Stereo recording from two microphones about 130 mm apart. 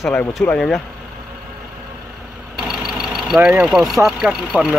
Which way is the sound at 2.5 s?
5° right (ahead or behind).